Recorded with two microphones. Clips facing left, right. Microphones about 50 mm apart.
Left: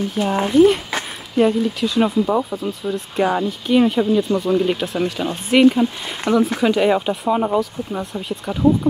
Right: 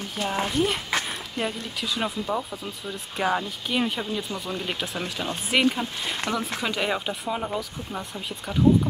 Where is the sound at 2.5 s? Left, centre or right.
Centre.